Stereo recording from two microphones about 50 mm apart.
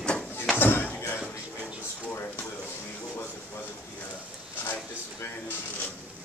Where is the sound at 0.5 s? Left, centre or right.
Left.